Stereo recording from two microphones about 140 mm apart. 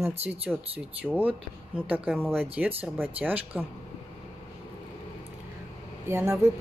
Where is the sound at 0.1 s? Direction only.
50° right (ahead or behind).